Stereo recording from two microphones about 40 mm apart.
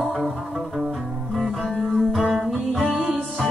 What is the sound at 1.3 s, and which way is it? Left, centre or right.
Music, centre.